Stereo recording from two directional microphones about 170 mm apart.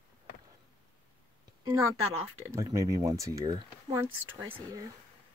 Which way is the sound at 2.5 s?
20° right (ahead or behind).